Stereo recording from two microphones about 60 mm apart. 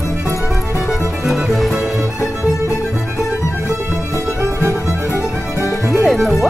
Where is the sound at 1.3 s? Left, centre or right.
Centre.